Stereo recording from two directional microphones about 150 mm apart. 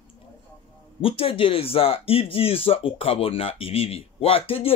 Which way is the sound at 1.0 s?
40° left (ahead or behind).